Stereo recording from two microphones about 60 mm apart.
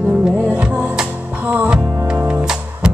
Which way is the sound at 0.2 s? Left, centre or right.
Centre.